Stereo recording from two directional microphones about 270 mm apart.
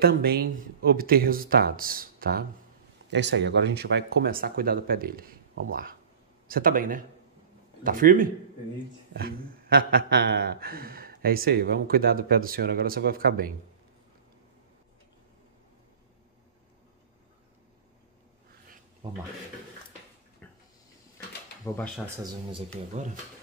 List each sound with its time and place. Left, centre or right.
0.0 s speech: right
21.7 s speech: centre
22.0 s speech: centre